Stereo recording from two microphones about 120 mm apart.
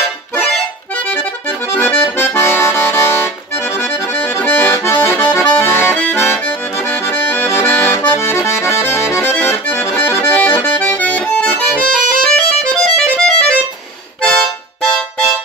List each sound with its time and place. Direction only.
1.8 s accordion: 20° left (ahead or behind)